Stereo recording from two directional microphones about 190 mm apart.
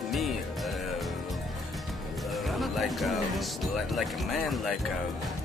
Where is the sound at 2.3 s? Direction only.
Centre (ahead or behind).